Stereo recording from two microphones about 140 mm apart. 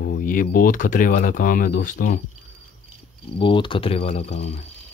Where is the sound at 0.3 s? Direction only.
85° left.